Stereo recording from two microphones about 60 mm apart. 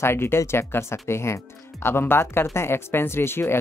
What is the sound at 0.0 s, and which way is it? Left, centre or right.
Speech, left.